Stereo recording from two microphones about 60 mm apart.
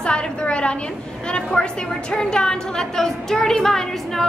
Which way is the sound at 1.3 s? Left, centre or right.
Centre.